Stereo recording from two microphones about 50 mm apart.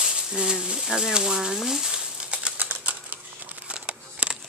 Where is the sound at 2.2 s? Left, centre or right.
Right.